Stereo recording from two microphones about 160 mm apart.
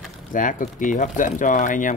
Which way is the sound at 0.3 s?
55° left (ahead or behind).